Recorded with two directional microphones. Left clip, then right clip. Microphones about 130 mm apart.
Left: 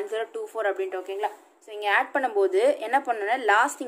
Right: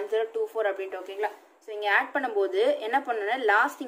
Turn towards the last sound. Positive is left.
turn(degrees=35)  # may be behind; listen again after turning